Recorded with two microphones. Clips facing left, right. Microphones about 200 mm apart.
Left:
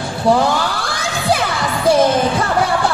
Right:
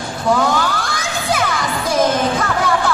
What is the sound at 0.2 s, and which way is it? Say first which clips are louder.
Crowd: left 2 dB; 30° left (ahead or behind).